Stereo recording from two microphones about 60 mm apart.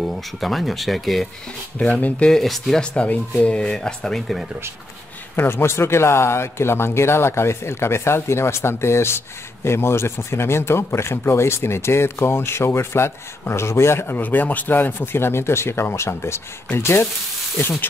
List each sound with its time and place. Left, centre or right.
0.0 s speech: centre
1.8 s speech: left
2.2 s speech: centre
3.0 s speech: left; by 4.5 s centre
5.3 s speech: left